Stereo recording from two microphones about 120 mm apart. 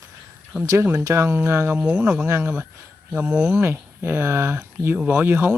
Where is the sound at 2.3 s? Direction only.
20° right (ahead or behind).